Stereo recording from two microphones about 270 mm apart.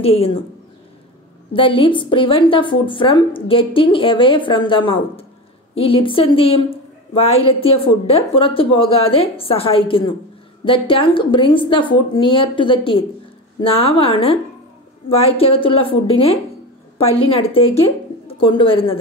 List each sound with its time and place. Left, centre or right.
0.0 s a woman's voice: left
1.5 s a woman's voice: centre